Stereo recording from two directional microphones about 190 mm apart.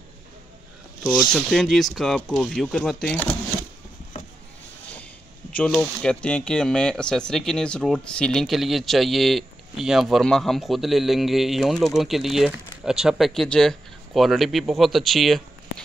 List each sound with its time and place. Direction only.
1.3 s speech: centre (ahead or behind)
5.5 s speech: 5° left (ahead or behind)